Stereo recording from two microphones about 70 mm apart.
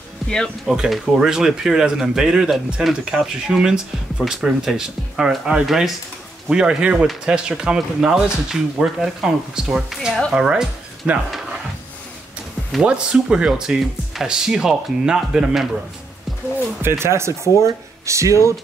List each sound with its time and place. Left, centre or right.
0.7 s speech: centre
12.8 s speech: centre
17.0 s speech: right